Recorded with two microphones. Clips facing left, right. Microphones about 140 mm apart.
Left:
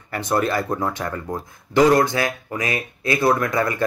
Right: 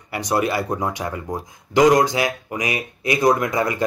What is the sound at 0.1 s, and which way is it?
Speech, 15° right (ahead or behind).